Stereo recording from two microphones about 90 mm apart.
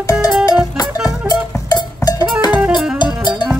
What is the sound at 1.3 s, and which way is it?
Cowbell, 45° left (ahead or behind).